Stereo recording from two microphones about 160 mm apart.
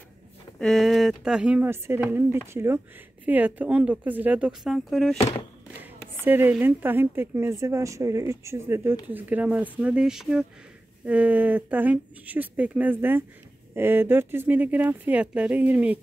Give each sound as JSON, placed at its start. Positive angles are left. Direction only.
{"t": 0.6, "sound": "a woman's voice", "side_deg": 0}
{"t": 6.2, "sound": "a woman's voice", "side_deg": -10}